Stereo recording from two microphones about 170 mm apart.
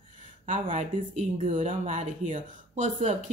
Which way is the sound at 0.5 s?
45° right (ahead or behind).